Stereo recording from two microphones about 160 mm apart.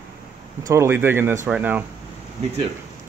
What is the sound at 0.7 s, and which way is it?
Speech, 15° right (ahead or behind).